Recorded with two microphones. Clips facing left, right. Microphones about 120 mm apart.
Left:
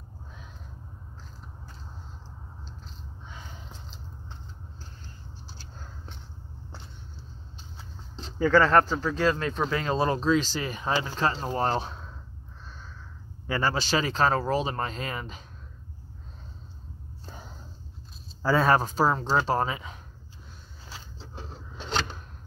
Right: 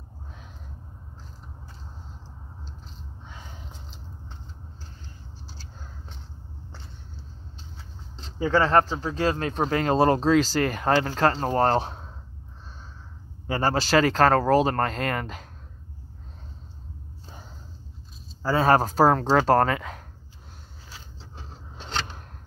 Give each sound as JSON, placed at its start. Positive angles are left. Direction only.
{"t": 8.4, "sound": "speech", "side_deg": -25}
{"t": 9.0, "sound": "speech", "side_deg": -35}
{"t": 10.6, "sound": "speech", "side_deg": -70}
{"t": 13.5, "sound": "speech", "side_deg": -40}
{"t": 13.7, "sound": "speech", "side_deg": -90}
{"t": 14.2, "sound": "speech", "side_deg": -65}
{"t": 18.6, "sound": "speech", "side_deg": -45}
{"t": 19.5, "sound": "speech", "side_deg": -75}